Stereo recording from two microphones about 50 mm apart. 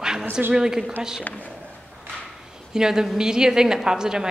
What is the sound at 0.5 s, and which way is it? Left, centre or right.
Speech, centre.